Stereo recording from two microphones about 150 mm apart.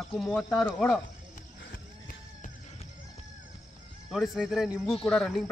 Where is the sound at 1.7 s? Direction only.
75° left (ahead or behind).